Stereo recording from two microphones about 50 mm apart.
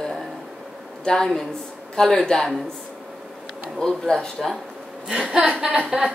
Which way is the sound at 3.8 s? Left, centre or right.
Centre.